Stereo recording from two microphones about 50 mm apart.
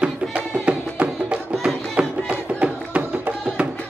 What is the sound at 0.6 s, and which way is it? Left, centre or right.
Music, right.